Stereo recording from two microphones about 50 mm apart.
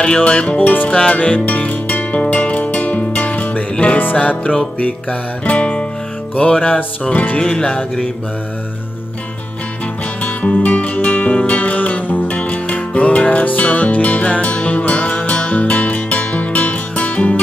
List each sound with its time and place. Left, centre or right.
0.0 s music: centre
0.6 s music: left
0.8 s music: left
7.3 s music: centre
10.2 s music: left